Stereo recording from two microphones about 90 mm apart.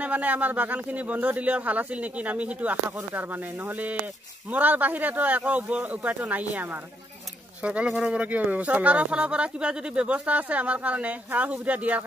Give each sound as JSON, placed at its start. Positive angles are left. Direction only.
{"t": 0.0, "sound": "speech", "side_deg": -15}